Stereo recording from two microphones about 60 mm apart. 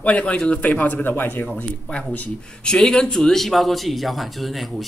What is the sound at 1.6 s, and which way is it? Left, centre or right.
A man's voice, left.